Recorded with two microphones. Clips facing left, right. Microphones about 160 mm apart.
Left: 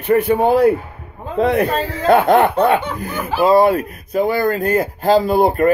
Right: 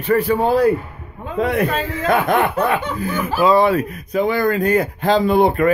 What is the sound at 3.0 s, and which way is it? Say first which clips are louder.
A man's voice: even; 45° left (ahead or behind).